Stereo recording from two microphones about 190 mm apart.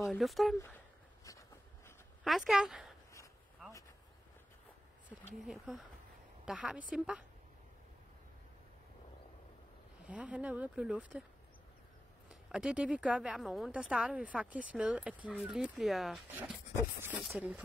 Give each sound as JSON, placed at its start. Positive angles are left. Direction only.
{"t": 0.0, "sound": "a woman's voice", "side_deg": 0}
{"t": 0.6, "sound": "a sound", "side_deg": 10}
{"t": 2.2, "sound": "a woman's voice", "side_deg": 0}
{"t": 5.3, "sound": "a woman's voice", "side_deg": 0}
{"t": 10.0, "sound": "speech", "side_deg": -5}
{"t": 12.3, "sound": "a woman's voice", "side_deg": -5}